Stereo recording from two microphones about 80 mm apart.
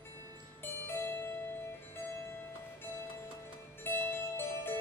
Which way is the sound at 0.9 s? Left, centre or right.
Left.